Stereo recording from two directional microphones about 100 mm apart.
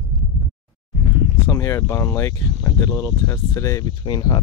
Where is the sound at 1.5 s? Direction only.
30° left (ahead or behind).